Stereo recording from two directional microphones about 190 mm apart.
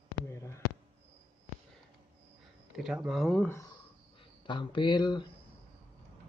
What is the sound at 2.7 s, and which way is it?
Speech, 5° right (ahead or behind).